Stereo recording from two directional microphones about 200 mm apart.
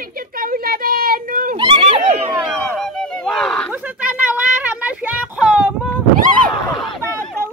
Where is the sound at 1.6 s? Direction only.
30° right (ahead or behind).